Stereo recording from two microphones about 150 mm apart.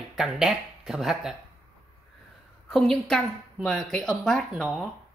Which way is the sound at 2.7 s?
5° left (ahead or behind).